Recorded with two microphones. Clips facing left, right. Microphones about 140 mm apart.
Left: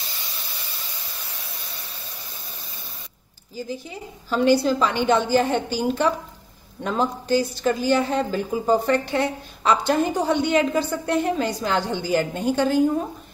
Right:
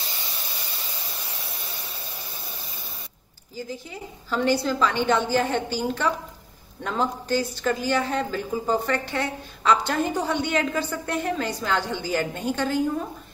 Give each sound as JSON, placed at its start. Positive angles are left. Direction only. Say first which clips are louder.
{"t": 4.3, "sound": "a woman's voice", "louder": "left 5 dB", "side_deg": 20}